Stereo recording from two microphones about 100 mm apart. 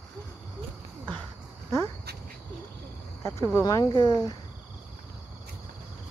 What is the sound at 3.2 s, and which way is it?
Speech, 35° left (ahead or behind).